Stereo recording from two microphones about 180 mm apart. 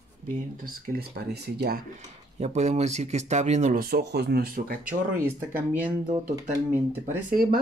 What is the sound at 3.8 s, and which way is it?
Speech, 60° right (ahead or behind).